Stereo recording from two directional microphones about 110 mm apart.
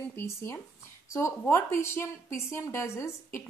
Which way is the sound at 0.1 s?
20° left (ahead or behind).